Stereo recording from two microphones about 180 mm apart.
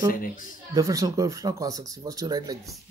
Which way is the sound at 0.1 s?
50° left (ahead or behind).